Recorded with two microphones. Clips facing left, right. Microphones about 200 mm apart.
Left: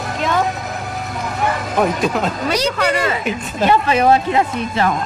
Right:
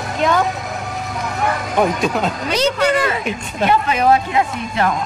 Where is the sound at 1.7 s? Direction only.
Centre (ahead or behind).